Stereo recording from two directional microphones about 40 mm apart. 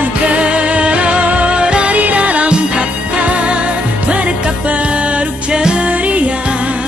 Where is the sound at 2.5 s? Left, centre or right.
Right.